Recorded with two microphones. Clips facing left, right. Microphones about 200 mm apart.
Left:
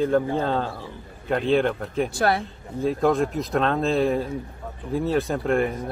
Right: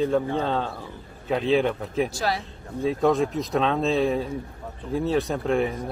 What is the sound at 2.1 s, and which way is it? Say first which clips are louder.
Speech: left 5 dB; 55° left (ahead or behind).